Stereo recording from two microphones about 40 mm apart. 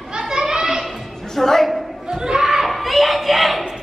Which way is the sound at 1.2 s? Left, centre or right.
Centre.